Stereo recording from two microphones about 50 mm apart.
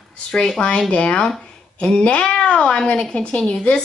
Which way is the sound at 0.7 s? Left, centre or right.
Left.